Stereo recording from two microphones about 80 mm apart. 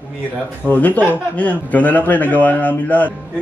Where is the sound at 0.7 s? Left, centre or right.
Left.